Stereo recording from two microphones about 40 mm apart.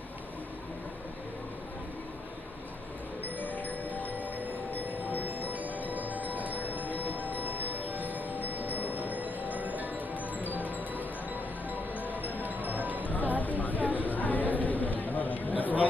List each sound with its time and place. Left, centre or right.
3.3 s music: left
4.2 s chime: left
5.2 s chime: right
5.9 s tubular bells: right
7.0 s music: right
8.4 s a sound: right
8.7 s train: right
9.1 s music: right
11.7 s music: right
13.0 s music: left
13.4 s a sound: left
13.7 s a sound: right
14.0 s chatter: left